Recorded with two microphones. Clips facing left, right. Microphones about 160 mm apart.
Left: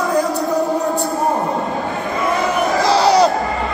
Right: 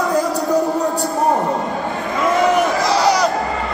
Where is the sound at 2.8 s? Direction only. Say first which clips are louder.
Left 3 dB; 30° left (ahead or behind).